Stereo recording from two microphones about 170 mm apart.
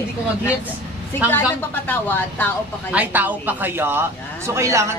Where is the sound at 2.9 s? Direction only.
10° right (ahead or behind).